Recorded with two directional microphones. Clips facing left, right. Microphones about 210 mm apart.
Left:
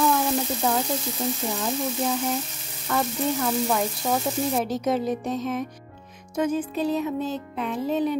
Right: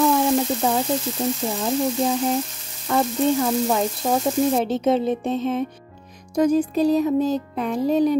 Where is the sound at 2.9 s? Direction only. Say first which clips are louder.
Right 5 dB; 25° right (ahead or behind).